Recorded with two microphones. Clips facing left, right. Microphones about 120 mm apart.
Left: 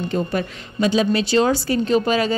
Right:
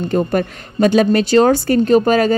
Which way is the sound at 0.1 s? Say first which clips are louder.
Right 8 dB; 50° right (ahead or behind).